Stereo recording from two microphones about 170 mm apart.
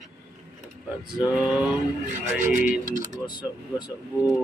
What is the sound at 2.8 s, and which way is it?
Speech, 50° right (ahead or behind).